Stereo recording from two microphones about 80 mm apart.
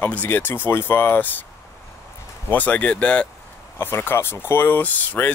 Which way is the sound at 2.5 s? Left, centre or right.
Centre.